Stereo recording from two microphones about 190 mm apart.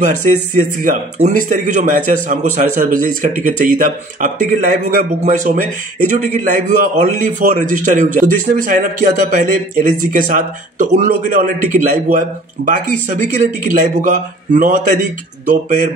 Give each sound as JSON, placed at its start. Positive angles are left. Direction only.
{"t": 0.0, "sound": "a man's voice", "side_deg": -40}